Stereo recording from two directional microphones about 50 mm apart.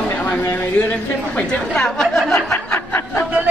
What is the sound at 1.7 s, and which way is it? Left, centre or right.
Speech, centre.